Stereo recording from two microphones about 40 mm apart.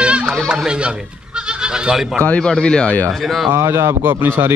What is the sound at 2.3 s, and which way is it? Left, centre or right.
Speech, left.